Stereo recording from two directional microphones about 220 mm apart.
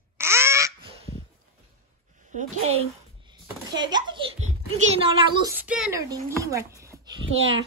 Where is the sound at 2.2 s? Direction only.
30° right (ahead or behind).